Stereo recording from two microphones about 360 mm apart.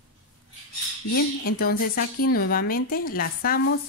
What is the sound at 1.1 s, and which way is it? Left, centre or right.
Speech, left.